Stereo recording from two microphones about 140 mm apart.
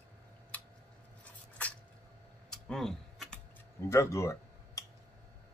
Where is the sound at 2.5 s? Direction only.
5° left (ahead or behind).